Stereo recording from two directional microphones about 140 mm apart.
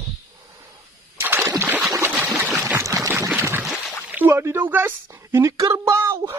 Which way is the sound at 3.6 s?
Centre (ahead or behind).